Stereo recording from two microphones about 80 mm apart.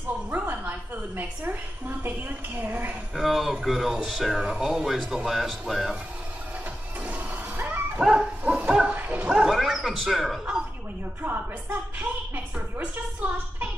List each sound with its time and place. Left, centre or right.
0.3 s a woman's voice: right
3.2 s speech: centre
7.1 s dog: right
8.0 s bow-wow: centre
9.3 s bow-wow: centre
11.2 s a woman's voice: right
12.5 s a sound: right